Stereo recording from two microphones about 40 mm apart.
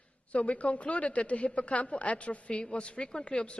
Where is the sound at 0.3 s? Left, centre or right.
Left.